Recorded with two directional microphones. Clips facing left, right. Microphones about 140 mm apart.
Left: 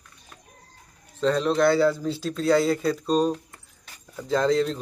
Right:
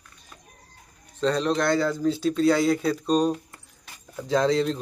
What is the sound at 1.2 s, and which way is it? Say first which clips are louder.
A man's voice: left 2 dB; 5° left (ahead or behind).